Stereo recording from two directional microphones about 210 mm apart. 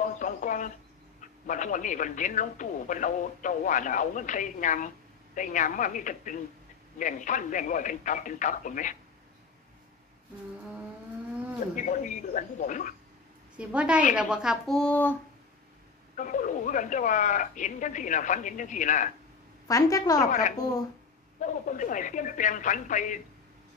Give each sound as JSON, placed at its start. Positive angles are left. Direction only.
{"t": 0.0, "sound": "a sound", "side_deg": 35}
{"t": 1.5, "sound": "speech", "side_deg": 35}
{"t": 11.7, "sound": "speech", "side_deg": 35}
{"t": 13.6, "sound": "speech", "side_deg": -5}
{"t": 16.2, "sound": "speech", "side_deg": 40}
{"t": 19.7, "sound": "a woman's voice", "side_deg": 15}
{"t": 20.2, "sound": "speech", "side_deg": 35}